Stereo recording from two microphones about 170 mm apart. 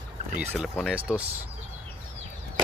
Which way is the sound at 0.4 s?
10° right (ahead or behind).